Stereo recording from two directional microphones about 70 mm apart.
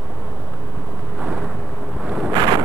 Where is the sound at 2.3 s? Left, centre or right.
Right.